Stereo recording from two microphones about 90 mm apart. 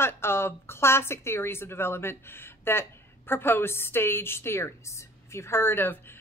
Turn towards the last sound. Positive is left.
turn(degrees=25)  # may be behind; listen again after turning